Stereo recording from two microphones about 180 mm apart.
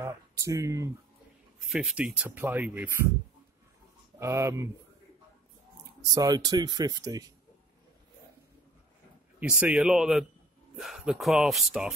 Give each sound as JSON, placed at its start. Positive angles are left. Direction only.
{"t": 0.0, "sound": "speech", "side_deg": -15}
{"t": 1.7, "sound": "speech", "side_deg": 0}
{"t": 4.2, "sound": "speech", "side_deg": -15}
{"t": 6.1, "sound": "speech", "side_deg": -20}
{"t": 9.6, "sound": "speech", "side_deg": -5}